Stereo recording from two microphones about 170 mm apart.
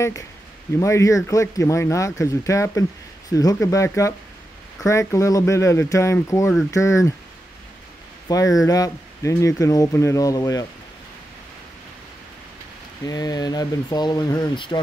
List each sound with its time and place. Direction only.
0.7 s speech: 20° left (ahead or behind)
8.3 s speech: 20° left (ahead or behind)
13.0 s speech: 25° left (ahead or behind)